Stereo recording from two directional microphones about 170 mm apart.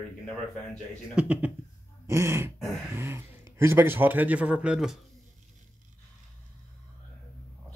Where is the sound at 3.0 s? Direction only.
15° right (ahead or behind).